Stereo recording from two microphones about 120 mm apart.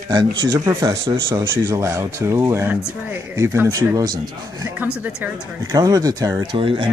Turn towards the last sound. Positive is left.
turn(degrees=-45)  # may be behind; listen again after turning